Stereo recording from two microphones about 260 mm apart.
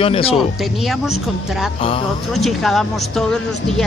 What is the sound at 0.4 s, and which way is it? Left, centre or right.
A woman's voice, centre.